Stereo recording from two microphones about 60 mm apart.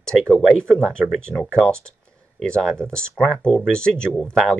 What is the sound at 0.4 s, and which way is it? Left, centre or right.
Speech, centre.